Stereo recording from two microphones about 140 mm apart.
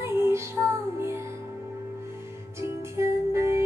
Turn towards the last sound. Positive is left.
turn(degrees=-20)  # may be behind; listen again after turning